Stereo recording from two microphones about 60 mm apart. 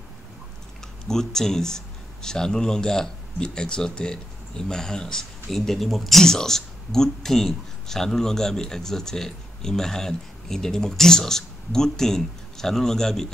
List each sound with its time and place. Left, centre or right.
1.0 s speech: centre